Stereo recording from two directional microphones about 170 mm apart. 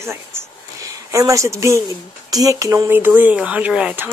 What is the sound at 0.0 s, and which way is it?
Speech, 15° right (ahead or behind).